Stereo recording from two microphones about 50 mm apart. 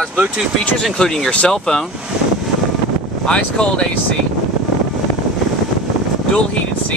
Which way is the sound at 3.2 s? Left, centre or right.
Centre.